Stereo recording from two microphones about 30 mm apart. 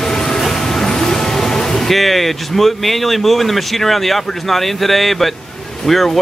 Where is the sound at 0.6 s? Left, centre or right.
Centre.